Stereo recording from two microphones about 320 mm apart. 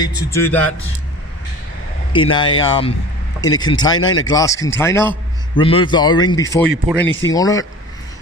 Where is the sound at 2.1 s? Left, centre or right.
Centre.